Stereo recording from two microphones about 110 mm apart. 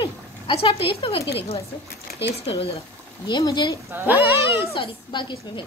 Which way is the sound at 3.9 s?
15° right (ahead or behind).